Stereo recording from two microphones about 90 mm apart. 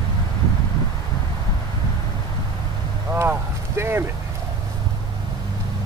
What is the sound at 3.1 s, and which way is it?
Speech, 25° right (ahead or behind).